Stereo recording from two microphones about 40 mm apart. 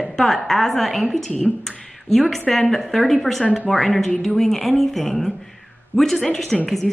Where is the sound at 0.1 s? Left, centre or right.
Centre.